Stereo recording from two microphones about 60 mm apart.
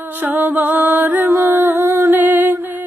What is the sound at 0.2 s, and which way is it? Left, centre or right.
Music, right.